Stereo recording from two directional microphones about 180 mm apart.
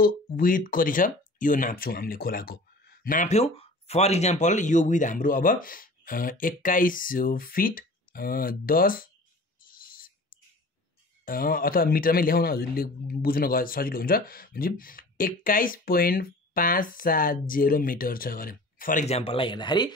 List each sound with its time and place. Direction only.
0.0 s speech: 50° left (ahead or behind)
9.7 s owl: 50° left (ahead or behind)
11.2 s speech: 55° left (ahead or behind); by 19.9 s 25° left (ahead or behind)